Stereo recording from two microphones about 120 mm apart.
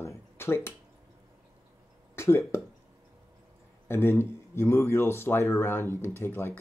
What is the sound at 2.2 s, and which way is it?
Speech, 20° left (ahead or behind).